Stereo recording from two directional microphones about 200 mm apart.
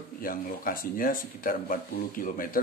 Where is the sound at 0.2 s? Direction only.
45° left (ahead or behind).